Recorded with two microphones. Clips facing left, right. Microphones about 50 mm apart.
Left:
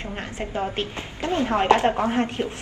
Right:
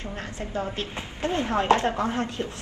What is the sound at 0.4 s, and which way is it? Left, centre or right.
A woman's voice, left.